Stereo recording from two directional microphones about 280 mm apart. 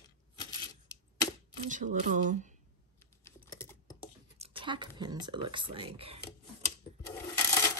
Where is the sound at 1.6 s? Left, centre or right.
Right.